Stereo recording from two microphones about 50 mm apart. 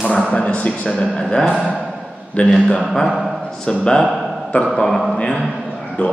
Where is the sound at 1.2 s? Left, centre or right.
Centre.